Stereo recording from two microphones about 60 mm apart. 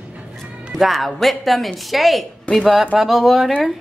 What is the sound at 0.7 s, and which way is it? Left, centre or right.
Speech, centre.